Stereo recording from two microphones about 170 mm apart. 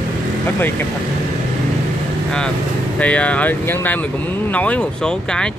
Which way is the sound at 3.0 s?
10° left (ahead or behind).